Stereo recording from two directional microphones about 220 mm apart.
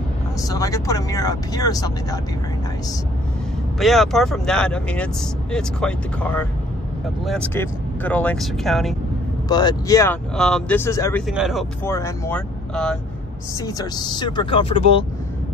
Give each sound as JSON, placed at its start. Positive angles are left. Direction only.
{"t": 0.4, "sound": "speech", "side_deg": 15}
{"t": 3.8, "sound": "speech", "side_deg": 0}
{"t": 9.5, "sound": "speech", "side_deg": 20}
{"t": 10.3, "sound": "speech", "side_deg": 5}
{"t": 11.2, "sound": "speech", "side_deg": 0}
{"t": 11.8, "sound": "speech", "side_deg": 10}
{"t": 13.6, "sound": "speech", "side_deg": 15}